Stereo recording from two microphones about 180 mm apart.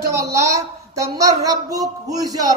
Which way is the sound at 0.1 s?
15° right (ahead or behind).